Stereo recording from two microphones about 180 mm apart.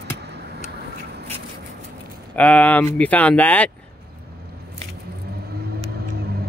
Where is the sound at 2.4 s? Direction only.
10° left (ahead or behind).